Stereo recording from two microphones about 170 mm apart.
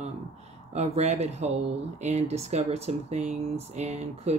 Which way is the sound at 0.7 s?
40° right (ahead or behind).